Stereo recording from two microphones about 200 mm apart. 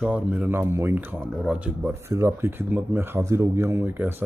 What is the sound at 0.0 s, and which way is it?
Speech, 5° right (ahead or behind).